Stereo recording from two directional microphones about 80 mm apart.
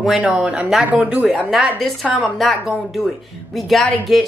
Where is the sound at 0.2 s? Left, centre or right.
Centre.